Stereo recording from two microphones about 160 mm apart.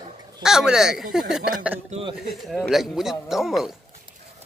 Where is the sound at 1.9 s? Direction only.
35° right (ahead or behind).